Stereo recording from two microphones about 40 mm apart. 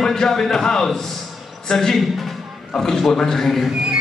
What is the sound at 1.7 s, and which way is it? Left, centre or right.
A man's voice, centre.